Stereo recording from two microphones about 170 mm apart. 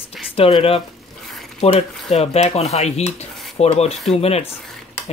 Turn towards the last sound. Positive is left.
turn(degrees=35)  # may be behind; listen again after turning